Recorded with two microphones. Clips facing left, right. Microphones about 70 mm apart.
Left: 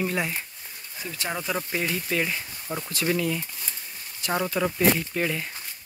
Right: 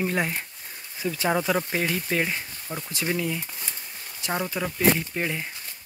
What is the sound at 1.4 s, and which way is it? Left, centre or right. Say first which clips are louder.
Speech: right 4 dB; right.